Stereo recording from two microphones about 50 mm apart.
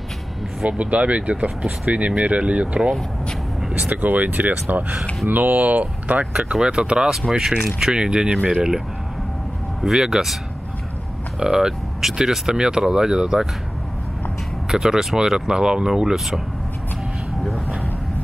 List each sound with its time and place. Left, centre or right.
0.7 s speech: right
3.9 s speech: right
6.3 s speech: centre
7.1 s speech: centre
11.3 s speech: centre
14.7 s speech: centre